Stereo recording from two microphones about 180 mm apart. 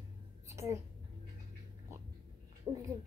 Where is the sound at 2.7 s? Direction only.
25° right (ahead or behind).